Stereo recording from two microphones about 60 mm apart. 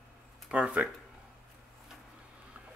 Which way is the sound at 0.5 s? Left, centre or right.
Centre.